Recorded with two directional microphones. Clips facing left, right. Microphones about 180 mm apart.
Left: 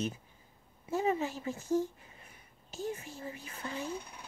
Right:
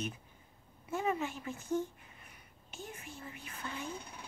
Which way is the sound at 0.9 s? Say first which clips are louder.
Left 3 dB; 30° left (ahead or behind).